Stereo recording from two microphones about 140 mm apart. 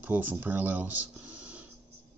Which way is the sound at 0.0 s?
10° right (ahead or behind).